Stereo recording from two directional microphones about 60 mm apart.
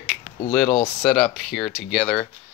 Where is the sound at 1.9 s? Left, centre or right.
Centre.